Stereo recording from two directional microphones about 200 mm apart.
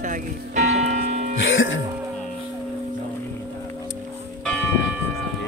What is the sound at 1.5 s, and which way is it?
Speech, 75° left (ahead or behind).